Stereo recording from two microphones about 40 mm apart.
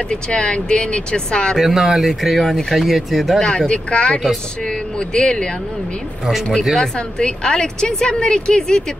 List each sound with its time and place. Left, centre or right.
0.1 s a woman's voice: left
1.6 s speech: centre
3.4 s a woman's voice: left
6.8 s a woman's voice: left